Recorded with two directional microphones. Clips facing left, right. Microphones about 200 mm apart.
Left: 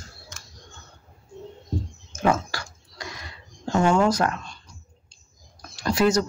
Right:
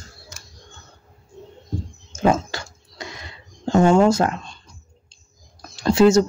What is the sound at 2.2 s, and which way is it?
Dog, 20° right (ahead or behind).